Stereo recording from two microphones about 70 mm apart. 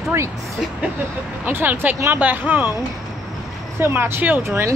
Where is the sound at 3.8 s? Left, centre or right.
Right.